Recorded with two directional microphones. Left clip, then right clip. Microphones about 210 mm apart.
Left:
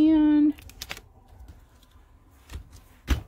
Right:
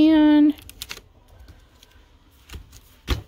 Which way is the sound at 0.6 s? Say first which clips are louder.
Right 2 dB; 10° right (ahead or behind).